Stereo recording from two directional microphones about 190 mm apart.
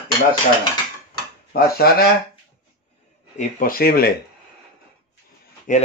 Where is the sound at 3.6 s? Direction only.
50° left (ahead or behind).